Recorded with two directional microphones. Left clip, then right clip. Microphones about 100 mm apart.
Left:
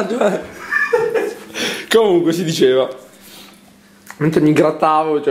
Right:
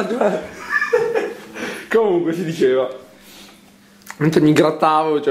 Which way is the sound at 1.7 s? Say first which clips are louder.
Left 3 dB; 60° left (ahead or behind).